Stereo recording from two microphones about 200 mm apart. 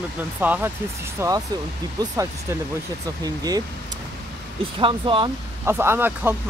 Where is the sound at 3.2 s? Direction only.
20° right (ahead or behind).